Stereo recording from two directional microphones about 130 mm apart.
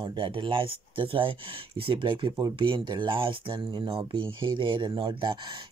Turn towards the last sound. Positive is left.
turn(degrees=-35)  # may be behind; listen again after turning